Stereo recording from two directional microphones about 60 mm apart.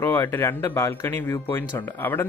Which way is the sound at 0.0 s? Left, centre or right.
Left.